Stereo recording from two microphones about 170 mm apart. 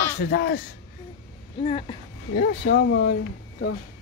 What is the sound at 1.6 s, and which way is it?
Speech, 35° left (ahead or behind).